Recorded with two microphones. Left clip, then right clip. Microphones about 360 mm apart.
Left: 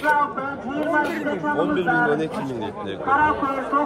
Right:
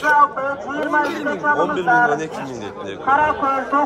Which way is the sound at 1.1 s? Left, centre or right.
Right.